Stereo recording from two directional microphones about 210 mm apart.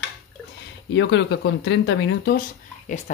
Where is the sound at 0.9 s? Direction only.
55° left (ahead or behind).